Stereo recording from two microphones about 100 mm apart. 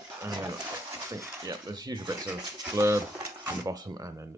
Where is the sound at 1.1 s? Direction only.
40° right (ahead or behind).